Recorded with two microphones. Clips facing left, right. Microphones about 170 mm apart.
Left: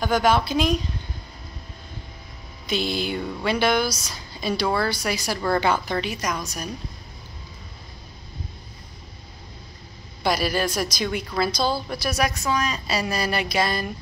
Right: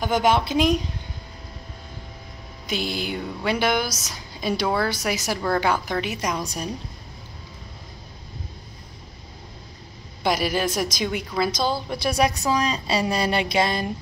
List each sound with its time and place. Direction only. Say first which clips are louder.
0.0 s a woman's voice: even; 20° right (ahead or behind)
2.7 s a woman's voice: left 2 dB; 15° right (ahead or behind)
6.1 s a woman's voice: right 2 dB; 30° right (ahead or behind)
10.2 s a woman's voice: even; 20° right (ahead or behind)